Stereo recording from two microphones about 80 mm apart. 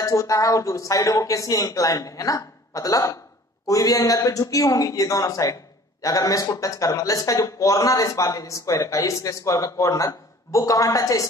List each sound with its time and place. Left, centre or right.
0.0 s speech: left